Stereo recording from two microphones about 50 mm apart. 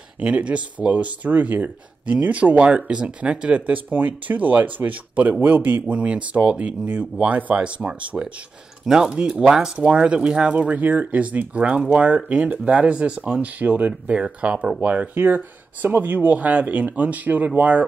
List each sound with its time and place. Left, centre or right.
0.2 s speech: right
8.8 s speech: centre
9.1 s speech: right
15.1 s speech: right